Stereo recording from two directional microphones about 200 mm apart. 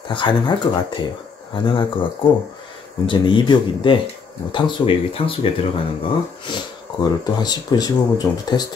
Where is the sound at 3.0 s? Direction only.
25° left (ahead or behind).